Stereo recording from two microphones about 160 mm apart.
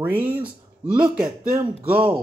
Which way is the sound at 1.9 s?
30° right (ahead or behind).